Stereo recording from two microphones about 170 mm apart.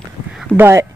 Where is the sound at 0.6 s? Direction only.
15° right (ahead or behind).